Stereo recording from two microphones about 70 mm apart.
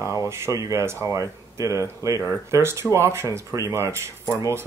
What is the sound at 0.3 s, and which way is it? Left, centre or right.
Speech, right.